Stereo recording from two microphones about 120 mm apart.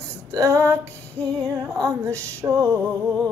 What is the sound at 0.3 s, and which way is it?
Female singing, 25° right (ahead or behind).